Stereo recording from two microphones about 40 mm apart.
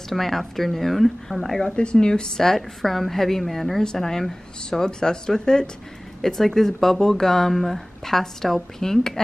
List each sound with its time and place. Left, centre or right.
0.1 s speech: centre
1.8 s speech: left
2.4 s speech: centre
3.8 s speech: centre